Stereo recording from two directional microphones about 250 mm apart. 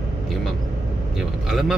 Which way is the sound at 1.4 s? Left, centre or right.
Centre.